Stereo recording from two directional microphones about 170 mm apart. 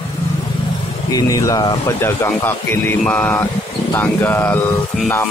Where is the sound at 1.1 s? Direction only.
20° left (ahead or behind).